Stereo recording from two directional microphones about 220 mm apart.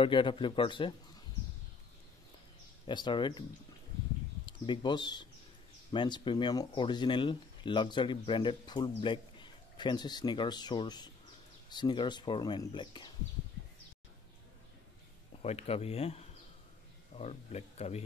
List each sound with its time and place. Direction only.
0.0 s speech: 25° left (ahead or behind)
2.9 s speech: 20° left (ahead or behind)
4.5 s speech: 20° left (ahead or behind)
15.4 s speech: 30° left (ahead or behind)